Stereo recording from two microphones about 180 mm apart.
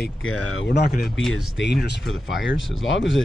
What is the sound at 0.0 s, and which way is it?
Speech, 80° left.